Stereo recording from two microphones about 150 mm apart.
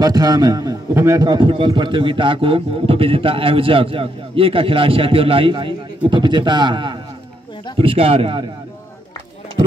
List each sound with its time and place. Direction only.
0.0 s a man's voice: 25° right (ahead or behind)